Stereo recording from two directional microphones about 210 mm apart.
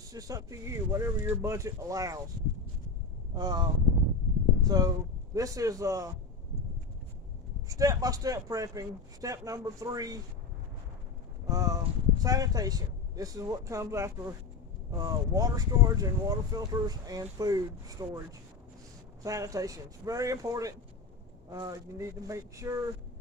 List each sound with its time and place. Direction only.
0.1 s speech: 15° right (ahead or behind)
3.3 s speech: 20° right (ahead or behind)
7.6 s speech: 15° right (ahead or behind)
11.4 s speech: 15° right (ahead or behind)
19.2 s speech: 15° right (ahead or behind)